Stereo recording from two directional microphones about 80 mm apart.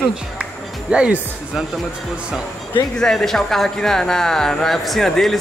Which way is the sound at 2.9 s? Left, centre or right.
Centre.